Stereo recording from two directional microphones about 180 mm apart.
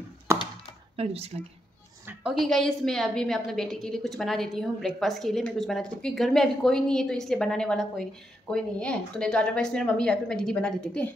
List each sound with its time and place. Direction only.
0.9 s speech: 35° right (ahead or behind)
2.2 s a woman's voice: centre (ahead or behind)